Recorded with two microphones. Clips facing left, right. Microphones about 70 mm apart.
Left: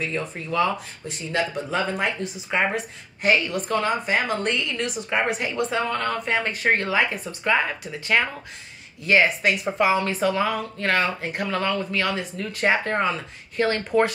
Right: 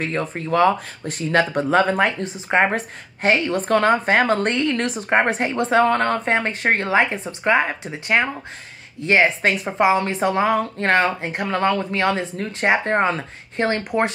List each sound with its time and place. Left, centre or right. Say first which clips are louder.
0.0 s speech: right 4 dB; right
2.2 s a woman's voice: right 5 dB; right
3.6 s a woman's voice: right 7 dB; right
11.4 s speech: right 5 dB; right